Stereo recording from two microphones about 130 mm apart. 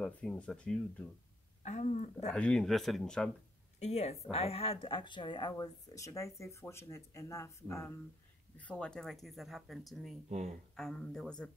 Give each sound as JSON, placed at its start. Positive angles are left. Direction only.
{"t": 0.0, "sound": "speech", "side_deg": 5}
{"t": 1.6, "sound": "speech", "side_deg": 65}
{"t": 2.3, "sound": "speech", "side_deg": 5}
{"t": 3.8, "sound": "speech", "side_deg": 55}
{"t": 8.5, "sound": "speech", "side_deg": 10}
{"t": 10.3, "sound": "speech", "side_deg": -60}
{"t": 10.8, "sound": "speech", "side_deg": 5}